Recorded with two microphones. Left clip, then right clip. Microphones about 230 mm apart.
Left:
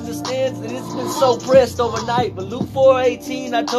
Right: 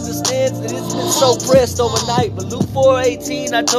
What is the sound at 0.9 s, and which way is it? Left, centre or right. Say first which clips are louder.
Music: right 6 dB; right.